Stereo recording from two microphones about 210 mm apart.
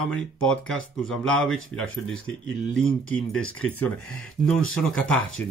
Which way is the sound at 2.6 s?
5° left (ahead or behind).